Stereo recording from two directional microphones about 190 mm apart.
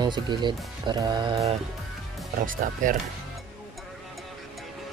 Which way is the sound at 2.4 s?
45° right (ahead or behind).